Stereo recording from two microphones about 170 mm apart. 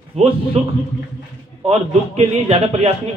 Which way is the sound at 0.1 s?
35° right (ahead or behind).